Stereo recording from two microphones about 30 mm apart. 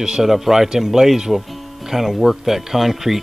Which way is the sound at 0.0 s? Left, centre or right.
Right.